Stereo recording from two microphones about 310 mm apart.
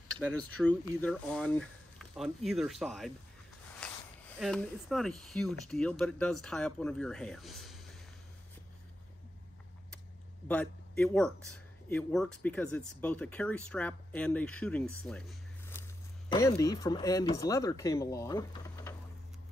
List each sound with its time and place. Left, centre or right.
0.1 s speech: right
0.7 s speech: centre
4.4 s speech: centre
10.5 s speech: centre